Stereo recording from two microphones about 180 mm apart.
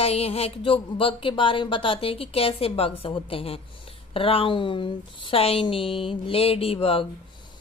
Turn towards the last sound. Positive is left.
turn(degrees=30)  # may be behind; listen again after turning